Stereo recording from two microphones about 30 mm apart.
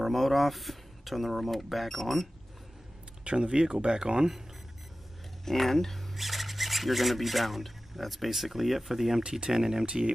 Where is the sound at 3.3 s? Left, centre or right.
Right.